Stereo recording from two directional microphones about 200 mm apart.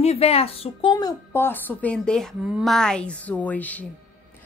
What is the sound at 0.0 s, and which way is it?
A woman's voice, 30° left (ahead or behind).